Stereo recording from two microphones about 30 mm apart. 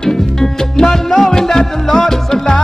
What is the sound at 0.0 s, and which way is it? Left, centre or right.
Music, centre.